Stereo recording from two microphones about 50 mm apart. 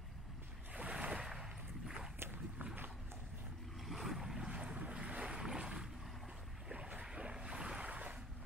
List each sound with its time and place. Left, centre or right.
0.7 s waves: right
2.6 s a sound: right
3.8 s boat: centre
4.5 s boat: right
6.7 s boat: right